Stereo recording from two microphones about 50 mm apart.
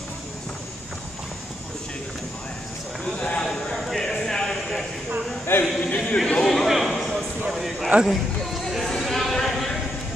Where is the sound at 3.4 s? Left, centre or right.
Centre.